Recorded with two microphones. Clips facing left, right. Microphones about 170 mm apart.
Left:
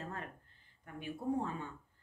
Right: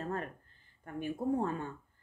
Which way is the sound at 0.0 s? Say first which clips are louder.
Right 7 dB; 50° right (ahead or behind).